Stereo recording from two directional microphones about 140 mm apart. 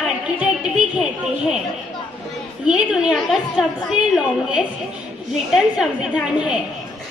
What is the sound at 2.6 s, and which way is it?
A woman's voice, 5° right (ahead or behind).